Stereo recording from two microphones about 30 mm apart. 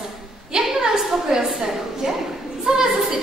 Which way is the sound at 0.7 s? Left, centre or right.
Centre.